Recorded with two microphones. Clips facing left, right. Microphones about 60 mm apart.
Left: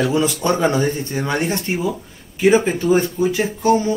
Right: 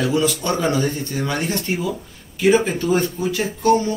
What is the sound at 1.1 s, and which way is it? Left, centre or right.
Speech, left.